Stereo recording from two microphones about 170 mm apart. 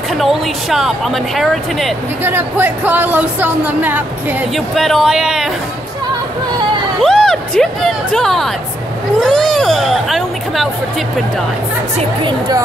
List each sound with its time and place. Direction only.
0.2 s speech: centre (ahead or behind)
2.2 s speech: 10° right (ahead or behind)
4.6 s speech: centre (ahead or behind)
7.0 s speech: centre (ahead or behind)
12.3 s speech: 25° right (ahead or behind)